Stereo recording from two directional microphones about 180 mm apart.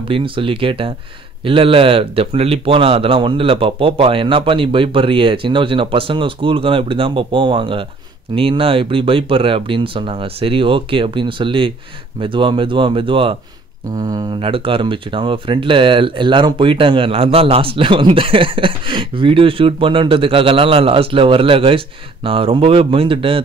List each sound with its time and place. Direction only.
0.1 s speech: 30° right (ahead or behind)